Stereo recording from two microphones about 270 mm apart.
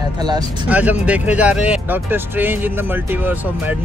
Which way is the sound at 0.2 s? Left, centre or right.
Centre.